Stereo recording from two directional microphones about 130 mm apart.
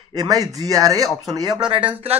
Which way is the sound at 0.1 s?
30° right (ahead or behind).